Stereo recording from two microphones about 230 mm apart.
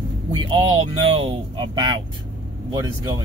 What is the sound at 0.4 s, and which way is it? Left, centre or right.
Speech, right.